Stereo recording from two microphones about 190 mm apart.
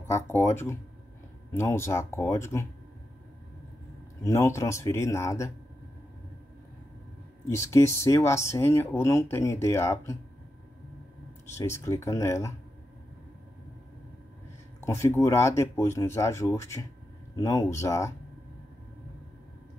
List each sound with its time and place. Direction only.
0.0 s speech: 10° left (ahead or behind)
4.2 s speech: 15° left (ahead or behind)
7.4 s speech: 15° left (ahead or behind)
11.5 s speech: 15° left (ahead or behind)
14.8 s speech: 15° left (ahead or behind)